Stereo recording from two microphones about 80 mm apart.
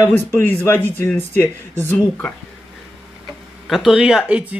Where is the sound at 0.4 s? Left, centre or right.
Left.